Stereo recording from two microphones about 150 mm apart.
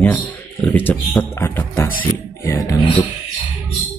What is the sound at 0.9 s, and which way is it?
Speech, 10° left (ahead or behind).